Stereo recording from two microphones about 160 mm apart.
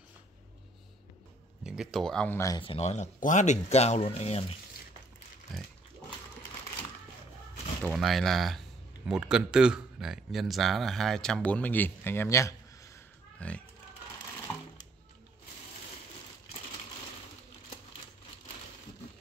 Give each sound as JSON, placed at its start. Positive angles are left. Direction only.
{"t": 1.6, "sound": "speech", "side_deg": -5}
{"t": 2.6, "sound": "speech", "side_deg": 40}
{"t": 5.5, "sound": "pig", "side_deg": 0}
{"t": 7.8, "sound": "speech", "side_deg": 0}
{"t": 13.4, "sound": "speech", "side_deg": 10}